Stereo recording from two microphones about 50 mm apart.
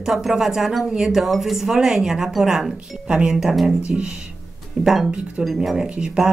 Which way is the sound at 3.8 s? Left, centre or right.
Centre.